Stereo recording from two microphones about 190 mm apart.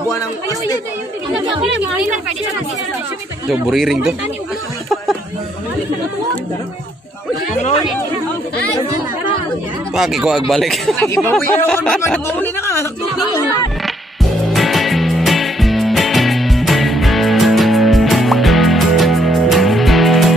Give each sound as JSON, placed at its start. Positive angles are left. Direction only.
{"t": 0.1, "sound": "a man's voice", "side_deg": 20}
{"t": 3.7, "sound": "speech", "side_deg": 0}
{"t": 7.5, "sound": "speech", "side_deg": 35}
{"t": 9.9, "sound": "speech", "side_deg": 0}
{"t": 11.0, "sound": "speech", "side_deg": 15}
{"t": 14.5, "sound": "music", "side_deg": 0}